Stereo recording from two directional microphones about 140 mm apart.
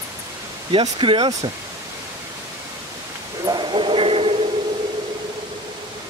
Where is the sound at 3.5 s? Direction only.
35° right (ahead or behind).